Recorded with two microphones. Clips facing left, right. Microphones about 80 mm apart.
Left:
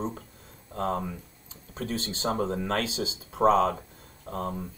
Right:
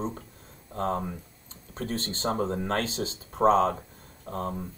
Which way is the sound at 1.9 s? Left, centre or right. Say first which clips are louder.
Even; left.